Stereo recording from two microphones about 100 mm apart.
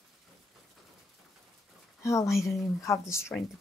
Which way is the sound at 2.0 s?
30° left (ahead or behind).